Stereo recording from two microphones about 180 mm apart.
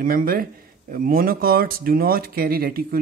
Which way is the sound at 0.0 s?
55° right (ahead or behind).